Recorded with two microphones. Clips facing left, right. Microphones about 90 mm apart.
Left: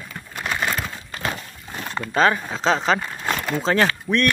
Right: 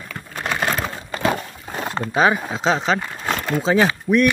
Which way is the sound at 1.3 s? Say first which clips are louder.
Right 7 dB; 50° right (ahead or behind).